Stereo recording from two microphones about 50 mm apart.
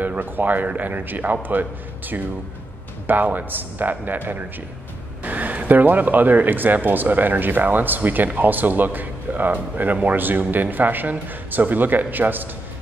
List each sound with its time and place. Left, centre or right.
0.0 s speech: right